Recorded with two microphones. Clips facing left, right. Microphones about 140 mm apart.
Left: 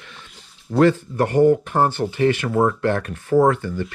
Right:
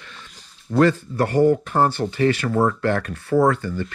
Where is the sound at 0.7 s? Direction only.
15° left (ahead or behind).